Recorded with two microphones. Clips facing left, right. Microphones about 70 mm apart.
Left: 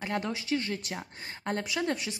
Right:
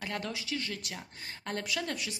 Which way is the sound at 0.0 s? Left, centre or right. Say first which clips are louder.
Left 4 dB; left.